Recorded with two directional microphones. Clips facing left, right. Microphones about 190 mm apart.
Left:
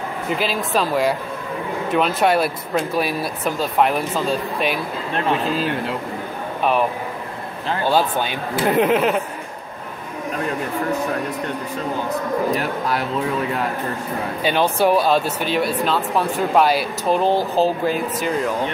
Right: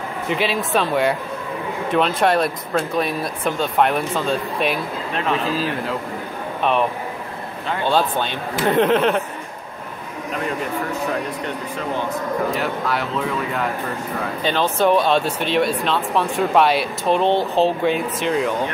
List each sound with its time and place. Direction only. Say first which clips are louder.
0.3 s speech: right 1 dB; centre (ahead or behind)
6.6 s speech: even; 5° left (ahead or behind)
12.5 s speech: even; 40° left (ahead or behind)
14.4 s speech: left 1 dB; 10° left (ahead or behind)